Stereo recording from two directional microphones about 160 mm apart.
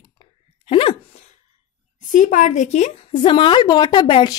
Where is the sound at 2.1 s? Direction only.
50° left (ahead or behind).